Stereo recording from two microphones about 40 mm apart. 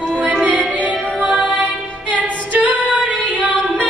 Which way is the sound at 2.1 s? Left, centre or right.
Right.